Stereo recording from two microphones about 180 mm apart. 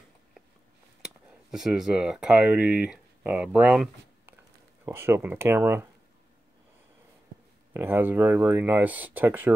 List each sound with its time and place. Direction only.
1.0 s speech: 5° right (ahead or behind)
7.7 s speech: 10° right (ahead or behind)